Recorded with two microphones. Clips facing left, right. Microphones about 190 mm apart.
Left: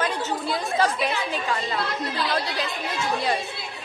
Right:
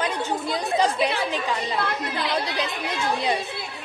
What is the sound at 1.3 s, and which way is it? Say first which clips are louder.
A woman's voice: right 1 dB; 20° right (ahead or behind).